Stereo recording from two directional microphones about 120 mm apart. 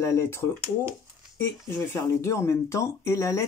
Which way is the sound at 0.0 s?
20° left (ahead or behind).